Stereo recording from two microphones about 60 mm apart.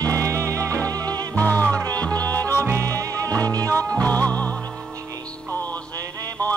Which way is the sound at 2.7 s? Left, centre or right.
Right.